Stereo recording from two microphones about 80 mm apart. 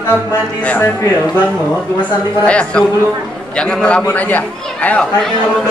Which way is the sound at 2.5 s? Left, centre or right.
Centre.